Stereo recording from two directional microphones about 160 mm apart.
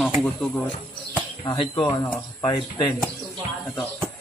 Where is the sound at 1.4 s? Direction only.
30° left (ahead or behind).